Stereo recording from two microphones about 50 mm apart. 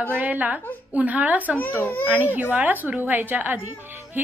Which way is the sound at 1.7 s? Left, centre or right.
Left.